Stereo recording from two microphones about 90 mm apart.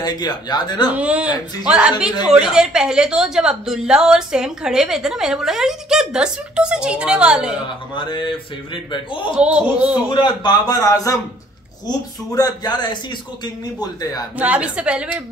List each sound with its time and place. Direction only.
0.0 s speech: 50° left (ahead or behind)
0.9 s a woman's voice: 10° right (ahead or behind)
7.9 s a sound: 60° left (ahead or behind)
9.3 s a woman's voice: 10° right (ahead or behind)
10.1 s speech: 55° left (ahead or behind); by 11.1 s 40° left (ahead or behind)
12.3 s speech: 45° left (ahead or behind)
14.4 s a woman's voice: 15° right (ahead or behind)